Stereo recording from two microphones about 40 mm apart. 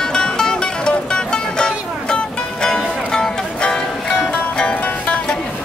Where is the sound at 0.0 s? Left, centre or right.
Centre.